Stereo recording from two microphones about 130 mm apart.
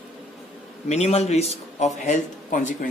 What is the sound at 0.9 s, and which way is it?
A man's voice, 55° left (ahead or behind).